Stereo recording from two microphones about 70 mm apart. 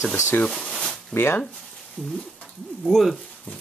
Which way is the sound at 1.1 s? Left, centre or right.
Left.